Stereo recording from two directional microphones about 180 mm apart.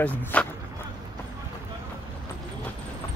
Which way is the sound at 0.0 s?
10° left (ahead or behind).